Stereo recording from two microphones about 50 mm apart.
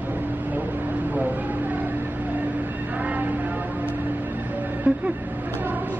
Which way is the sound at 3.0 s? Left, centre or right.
Right.